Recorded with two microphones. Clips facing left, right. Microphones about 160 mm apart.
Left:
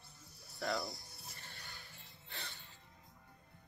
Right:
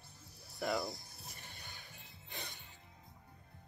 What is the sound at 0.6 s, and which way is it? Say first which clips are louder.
Music: right 2 dB; 20° right (ahead or behind).